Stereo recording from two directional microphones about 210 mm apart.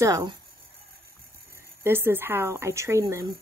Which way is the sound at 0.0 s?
15° right (ahead or behind).